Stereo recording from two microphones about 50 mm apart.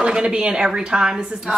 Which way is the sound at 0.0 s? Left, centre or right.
Centre.